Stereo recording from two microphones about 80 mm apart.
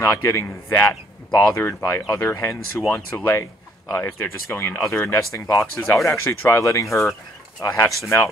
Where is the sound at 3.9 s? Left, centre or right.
Left.